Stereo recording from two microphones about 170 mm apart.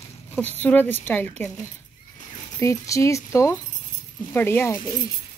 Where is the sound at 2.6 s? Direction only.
20° left (ahead or behind).